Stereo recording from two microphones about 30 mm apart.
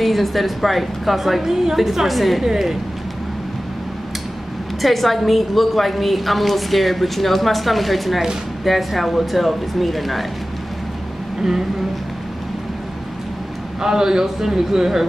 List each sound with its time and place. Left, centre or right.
0.0 s a woman's voice: centre
1.5 s a man's voice: centre
2.4 s a man's voice: centre
4.8 s a woman's voice: centre
13.7 s a man's voice: centre